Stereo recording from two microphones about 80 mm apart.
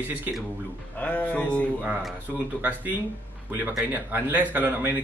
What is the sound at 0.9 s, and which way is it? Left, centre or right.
Speech, centre.